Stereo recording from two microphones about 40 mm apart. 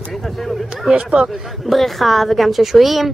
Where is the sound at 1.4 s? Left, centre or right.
Centre.